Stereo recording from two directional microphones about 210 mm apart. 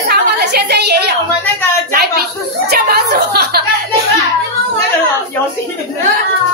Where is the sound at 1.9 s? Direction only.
45° right (ahead or behind).